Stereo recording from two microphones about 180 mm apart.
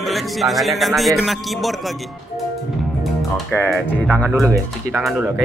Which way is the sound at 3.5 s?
10° left (ahead or behind).